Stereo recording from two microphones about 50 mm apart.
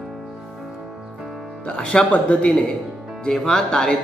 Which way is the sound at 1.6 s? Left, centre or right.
Centre.